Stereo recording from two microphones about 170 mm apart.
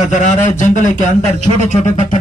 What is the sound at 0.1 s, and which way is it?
A man's voice, 45° left (ahead or behind).